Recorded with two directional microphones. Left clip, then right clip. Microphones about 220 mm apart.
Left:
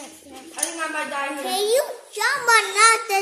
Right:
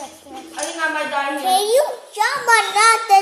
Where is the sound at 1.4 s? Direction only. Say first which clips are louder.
Right 5 dB; 15° left (ahead or behind).